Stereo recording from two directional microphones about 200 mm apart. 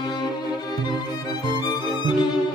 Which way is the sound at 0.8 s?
20° left (ahead or behind).